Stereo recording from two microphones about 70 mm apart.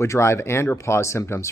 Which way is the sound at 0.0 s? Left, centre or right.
Left.